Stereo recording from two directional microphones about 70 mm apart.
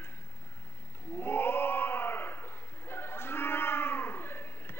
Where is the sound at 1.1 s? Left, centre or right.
Left.